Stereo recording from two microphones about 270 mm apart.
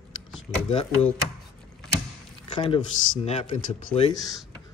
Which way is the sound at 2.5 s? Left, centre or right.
Centre.